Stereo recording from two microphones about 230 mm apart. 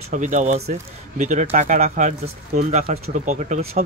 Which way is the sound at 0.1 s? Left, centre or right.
Right.